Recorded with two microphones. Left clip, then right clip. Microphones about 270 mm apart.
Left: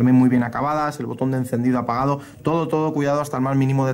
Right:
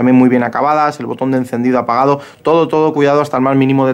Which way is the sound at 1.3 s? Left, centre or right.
Centre.